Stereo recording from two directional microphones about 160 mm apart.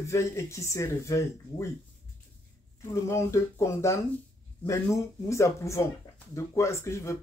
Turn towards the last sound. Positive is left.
turn(degrees=15)  # may be behind; listen again after turning